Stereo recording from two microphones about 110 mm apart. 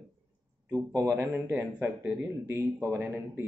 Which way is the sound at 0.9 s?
20° right (ahead or behind).